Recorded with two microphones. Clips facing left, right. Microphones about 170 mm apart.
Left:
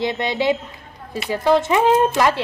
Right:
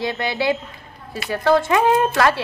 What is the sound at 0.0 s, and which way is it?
A woman's voice, 20° left (ahead or behind).